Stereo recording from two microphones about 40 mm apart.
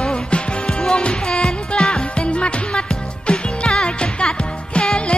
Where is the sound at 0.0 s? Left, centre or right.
Left.